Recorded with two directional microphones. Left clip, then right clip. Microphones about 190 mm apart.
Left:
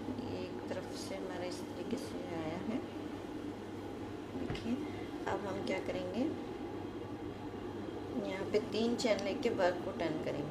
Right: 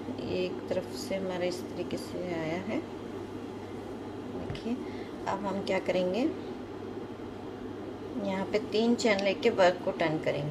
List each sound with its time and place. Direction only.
0.3 s vehicle: 20° left (ahead or behind)
1.3 s a woman's voice: 20° left (ahead or behind)
5.2 s a woman's voice: 20° left (ahead or behind)
8.2 s a woman's voice: 20° left (ahead or behind)